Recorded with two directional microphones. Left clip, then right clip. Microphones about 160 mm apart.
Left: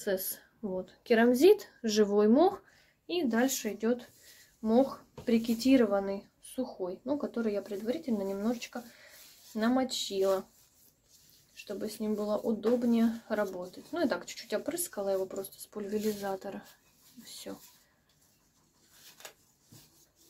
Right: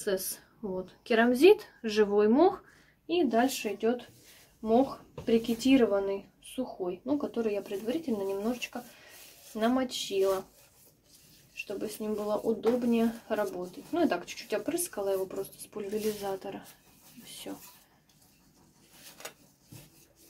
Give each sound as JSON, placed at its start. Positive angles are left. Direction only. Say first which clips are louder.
{"t": 0.0, "sound": "speech", "louder": "right 1 dB", "side_deg": 45}
{"t": 11.5, "sound": "speech", "louder": "right 2 dB", "side_deg": 45}